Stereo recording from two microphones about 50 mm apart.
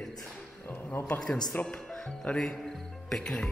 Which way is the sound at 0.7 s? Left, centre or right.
Left.